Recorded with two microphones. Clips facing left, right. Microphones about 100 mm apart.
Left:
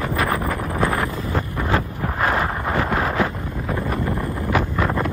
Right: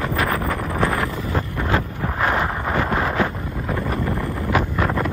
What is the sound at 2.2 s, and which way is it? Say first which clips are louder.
Wind noise: even; centre (ahead or behind).